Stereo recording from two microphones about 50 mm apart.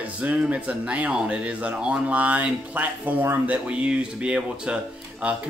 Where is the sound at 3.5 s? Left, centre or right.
Right.